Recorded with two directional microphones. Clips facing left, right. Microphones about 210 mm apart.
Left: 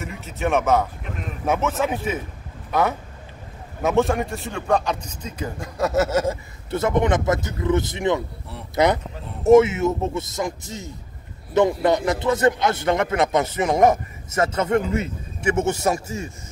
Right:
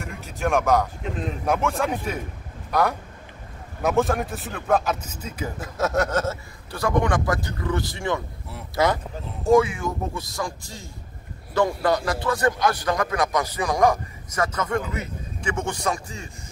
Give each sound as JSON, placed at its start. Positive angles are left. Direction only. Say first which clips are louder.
{"t": 0.0, "sound": "a man's voice", "louder": "left 2 dB", "side_deg": 0}
{"t": 6.7, "sound": "a man's voice", "louder": "left 3 dB", "side_deg": 20}